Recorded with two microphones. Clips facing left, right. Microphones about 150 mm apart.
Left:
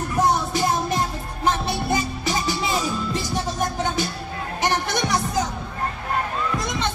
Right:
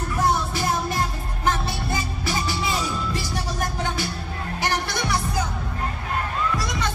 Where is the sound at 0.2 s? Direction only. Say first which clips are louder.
Left 3 dB; 20° left (ahead or behind).